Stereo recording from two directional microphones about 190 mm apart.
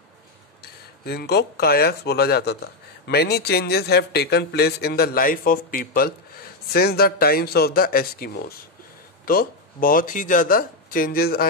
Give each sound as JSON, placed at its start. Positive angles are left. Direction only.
{"t": 0.6, "sound": "speech", "side_deg": 55}